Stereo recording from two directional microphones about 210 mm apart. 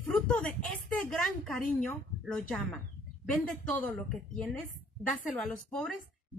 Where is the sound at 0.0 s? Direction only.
5° left (ahead or behind).